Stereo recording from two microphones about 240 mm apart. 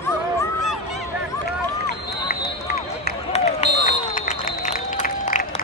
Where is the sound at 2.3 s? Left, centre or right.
Left.